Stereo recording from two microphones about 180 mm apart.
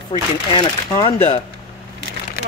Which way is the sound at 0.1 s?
25° left (ahead or behind).